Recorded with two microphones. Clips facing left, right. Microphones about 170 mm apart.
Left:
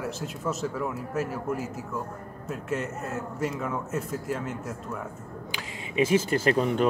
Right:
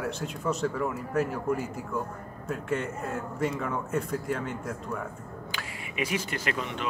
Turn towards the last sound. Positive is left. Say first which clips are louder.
# left 9 dB
turn(degrees=40)  # may be behind; listen again after turning